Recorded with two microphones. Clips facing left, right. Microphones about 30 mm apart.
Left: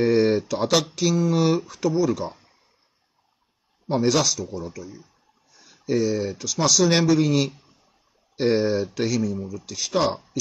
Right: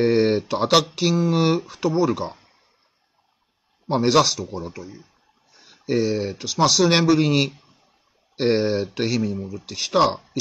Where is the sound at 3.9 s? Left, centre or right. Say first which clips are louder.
Right 3 dB; right.